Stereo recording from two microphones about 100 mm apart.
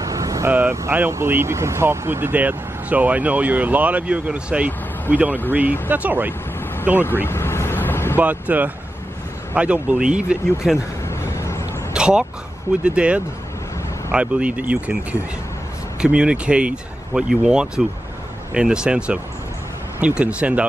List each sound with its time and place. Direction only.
0.0 s vehicle: 35° right (ahead or behind)
0.5 s speech: 20° right (ahead or behind)
7.2 s vehicle: 25° left (ahead or behind)
8.2 s speech: 15° right (ahead or behind)
11.1 s a sound: 25° left (ahead or behind)
11.9 s speech: 10° right (ahead or behind)
16.0 s speech: 10° right (ahead or behind)